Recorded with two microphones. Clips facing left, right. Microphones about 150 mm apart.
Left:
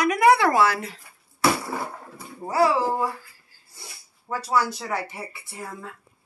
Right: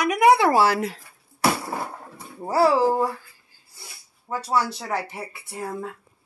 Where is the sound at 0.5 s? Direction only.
35° right (ahead or behind).